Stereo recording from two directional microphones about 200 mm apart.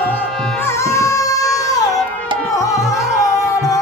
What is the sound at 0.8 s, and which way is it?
Music, 15° left (ahead or behind).